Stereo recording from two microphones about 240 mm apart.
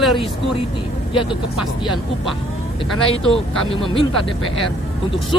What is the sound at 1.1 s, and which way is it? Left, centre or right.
Speech, left.